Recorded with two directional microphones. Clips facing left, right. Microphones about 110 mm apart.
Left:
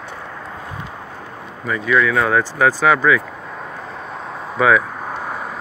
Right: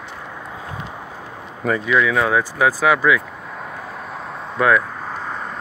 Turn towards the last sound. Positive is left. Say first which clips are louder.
# left 2 dB
turn(degrees=5)  # may be behind; listen again after turning